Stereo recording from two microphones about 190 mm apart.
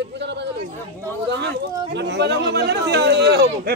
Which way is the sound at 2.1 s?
60° right (ahead or behind).